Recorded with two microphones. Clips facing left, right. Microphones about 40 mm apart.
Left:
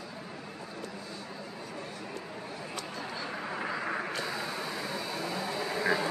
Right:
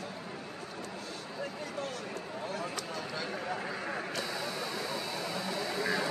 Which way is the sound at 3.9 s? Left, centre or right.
Left.